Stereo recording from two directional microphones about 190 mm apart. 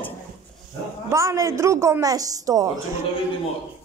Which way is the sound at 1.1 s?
15° right (ahead or behind).